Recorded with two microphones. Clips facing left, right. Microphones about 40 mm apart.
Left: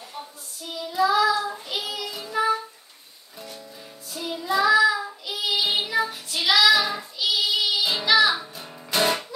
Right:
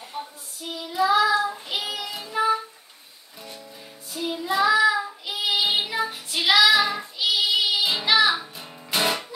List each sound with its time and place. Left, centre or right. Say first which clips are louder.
0.2 s child singing: right 3 dB; centre
2.3 s music: right 1 dB; centre
4.1 s child singing: even; centre